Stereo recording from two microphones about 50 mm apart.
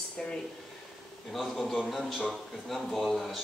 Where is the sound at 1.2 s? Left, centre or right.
Centre.